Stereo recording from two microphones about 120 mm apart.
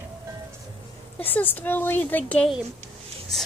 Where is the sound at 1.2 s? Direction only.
15° left (ahead or behind).